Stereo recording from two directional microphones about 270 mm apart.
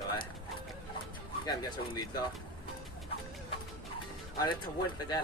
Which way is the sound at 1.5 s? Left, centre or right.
Centre.